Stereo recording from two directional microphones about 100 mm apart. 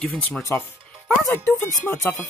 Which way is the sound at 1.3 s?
25° left (ahead or behind).